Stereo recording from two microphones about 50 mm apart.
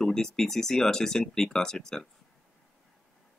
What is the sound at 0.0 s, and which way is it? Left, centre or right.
Speech, centre.